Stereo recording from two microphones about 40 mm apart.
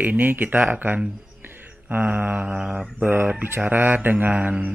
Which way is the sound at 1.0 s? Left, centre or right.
Centre.